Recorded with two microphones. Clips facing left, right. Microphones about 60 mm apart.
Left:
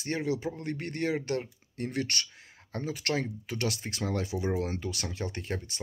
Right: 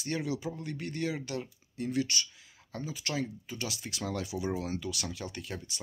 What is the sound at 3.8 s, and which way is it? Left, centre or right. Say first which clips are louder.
Speech: left 3 dB; left.